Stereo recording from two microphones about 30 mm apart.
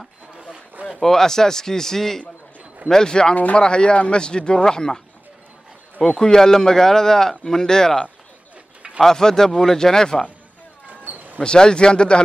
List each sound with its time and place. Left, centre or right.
1.0 s speech: centre
9.0 s speech: centre
10.9 s a sound: right
11.4 s speech: left